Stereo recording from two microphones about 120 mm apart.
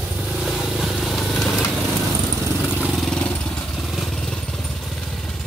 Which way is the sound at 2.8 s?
5° left (ahead or behind).